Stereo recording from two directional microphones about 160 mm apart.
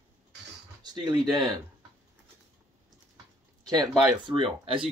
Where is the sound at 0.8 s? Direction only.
25° right (ahead or behind).